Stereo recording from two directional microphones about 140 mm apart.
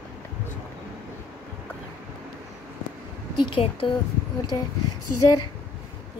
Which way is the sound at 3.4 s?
40° left (ahead or behind).